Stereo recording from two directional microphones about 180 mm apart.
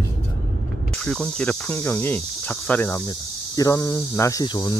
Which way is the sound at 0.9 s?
5° left (ahead or behind).